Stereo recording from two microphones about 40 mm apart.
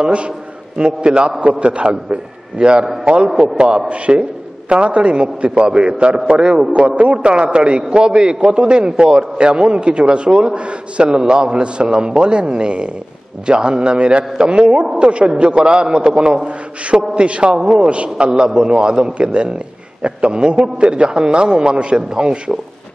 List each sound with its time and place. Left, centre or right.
0.0 s a man's voice: right
7.0 s a man's voice: right